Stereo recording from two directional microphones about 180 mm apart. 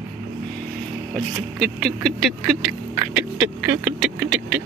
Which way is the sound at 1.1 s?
Centre (ahead or behind).